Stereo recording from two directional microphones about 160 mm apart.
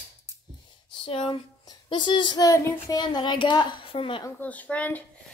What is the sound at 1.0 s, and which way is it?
A child's voice, 35° left (ahead or behind).